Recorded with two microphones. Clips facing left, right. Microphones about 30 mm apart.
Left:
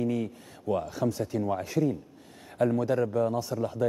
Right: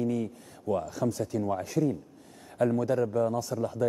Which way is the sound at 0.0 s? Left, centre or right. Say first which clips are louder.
Even; left.